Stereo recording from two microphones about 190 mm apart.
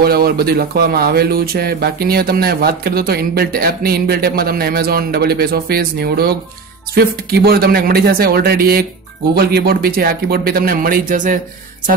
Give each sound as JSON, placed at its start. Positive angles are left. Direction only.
{"t": 0.0, "sound": "speech", "side_deg": -55}
{"t": 7.3, "sound": "speech", "side_deg": -55}